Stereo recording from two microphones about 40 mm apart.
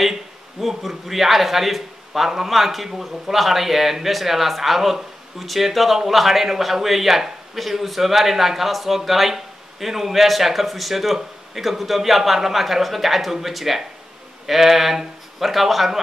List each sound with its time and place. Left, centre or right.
0.0 s a man's voice: centre